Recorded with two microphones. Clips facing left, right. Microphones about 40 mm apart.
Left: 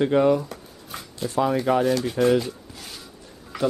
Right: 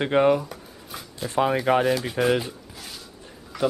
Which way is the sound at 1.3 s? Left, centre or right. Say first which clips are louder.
Even; right.